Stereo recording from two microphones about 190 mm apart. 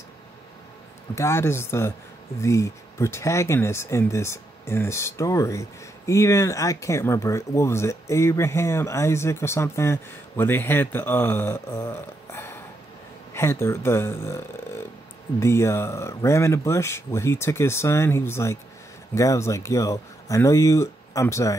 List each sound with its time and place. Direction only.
1.1 s speech: 15° left (ahead or behind)